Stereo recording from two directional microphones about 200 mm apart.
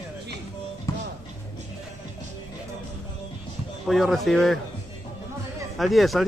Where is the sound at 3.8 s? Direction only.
Centre (ahead or behind).